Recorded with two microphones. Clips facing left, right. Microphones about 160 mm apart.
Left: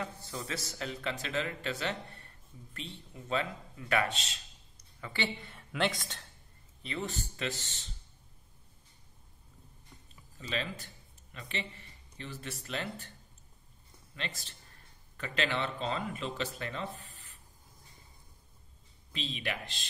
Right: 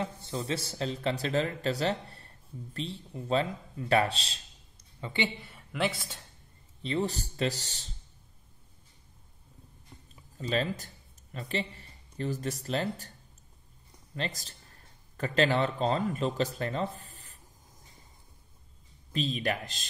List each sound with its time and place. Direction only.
0.0 s a man's voice: 25° right (ahead or behind)
5.0 s a woman's voice: 20° right (ahead or behind)
5.4 s a woman's voice: centre (ahead or behind)
6.8 s a man's voice: 30° right (ahead or behind)
10.3 s a man's voice: 40° right (ahead or behind)
14.1 s a man's voice: 40° right (ahead or behind)
19.1 s speech: 40° right (ahead or behind)